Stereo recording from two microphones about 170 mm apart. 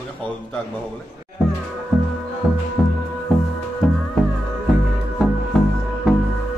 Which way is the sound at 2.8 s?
Centre (ahead or behind).